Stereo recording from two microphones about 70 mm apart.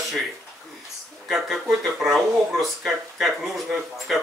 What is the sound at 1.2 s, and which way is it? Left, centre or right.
Speech, centre.